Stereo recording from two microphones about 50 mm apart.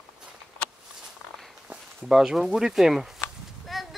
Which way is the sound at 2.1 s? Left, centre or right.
Centre.